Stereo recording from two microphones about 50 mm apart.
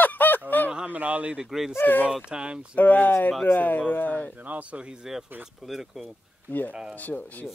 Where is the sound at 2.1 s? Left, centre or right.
Centre.